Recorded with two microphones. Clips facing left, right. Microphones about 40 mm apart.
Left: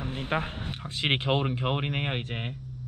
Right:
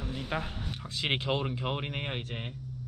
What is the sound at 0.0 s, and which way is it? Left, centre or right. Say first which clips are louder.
Speech: left 4 dB; left.